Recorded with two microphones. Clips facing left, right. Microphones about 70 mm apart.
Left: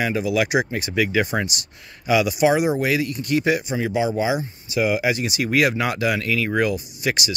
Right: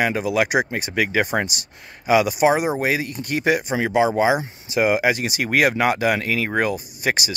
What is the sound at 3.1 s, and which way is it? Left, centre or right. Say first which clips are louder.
Speech: even; right.